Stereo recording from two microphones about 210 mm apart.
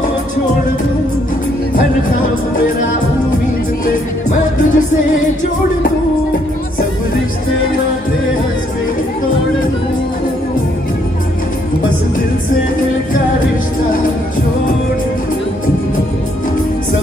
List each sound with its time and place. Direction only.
3.8 s music: 35° left (ahead or behind)